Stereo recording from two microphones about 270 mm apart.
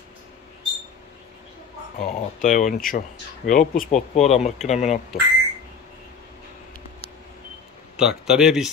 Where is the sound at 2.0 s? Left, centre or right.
Left.